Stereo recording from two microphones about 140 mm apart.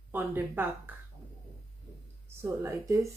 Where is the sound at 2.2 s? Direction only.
20° right (ahead or behind).